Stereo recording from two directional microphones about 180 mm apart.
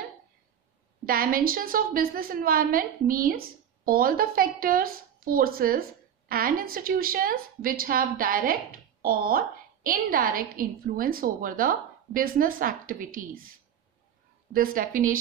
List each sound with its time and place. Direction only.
1.0 s a woman's voice: 55° right (ahead or behind)
14.5 s a woman's voice: 50° right (ahead or behind)